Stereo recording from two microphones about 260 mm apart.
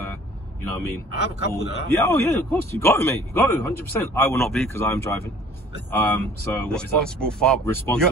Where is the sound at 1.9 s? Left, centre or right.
Centre.